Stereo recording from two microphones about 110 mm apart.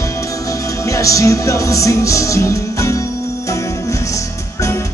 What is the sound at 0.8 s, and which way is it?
Music, 30° left (ahead or behind).